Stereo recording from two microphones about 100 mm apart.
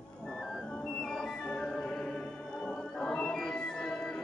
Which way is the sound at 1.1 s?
5° left (ahead or behind).